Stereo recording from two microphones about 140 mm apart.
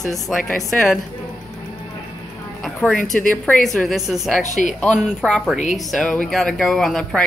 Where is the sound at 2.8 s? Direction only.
5° left (ahead or behind).